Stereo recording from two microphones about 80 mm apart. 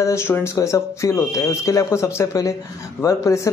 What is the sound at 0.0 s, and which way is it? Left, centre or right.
Speech, left.